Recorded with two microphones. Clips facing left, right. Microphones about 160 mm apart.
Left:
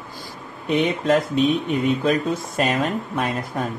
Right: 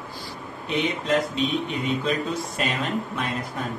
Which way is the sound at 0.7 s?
50° left (ahead or behind).